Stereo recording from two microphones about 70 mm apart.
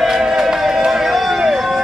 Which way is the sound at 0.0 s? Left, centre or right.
Centre.